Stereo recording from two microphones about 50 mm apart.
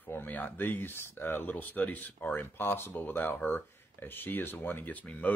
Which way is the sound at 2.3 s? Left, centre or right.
Left.